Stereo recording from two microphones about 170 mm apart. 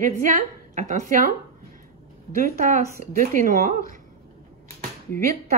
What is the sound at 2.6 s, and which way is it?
A woman's voice, 50° right (ahead or behind).